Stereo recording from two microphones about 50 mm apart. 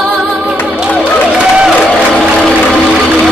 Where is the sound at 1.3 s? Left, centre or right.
Centre.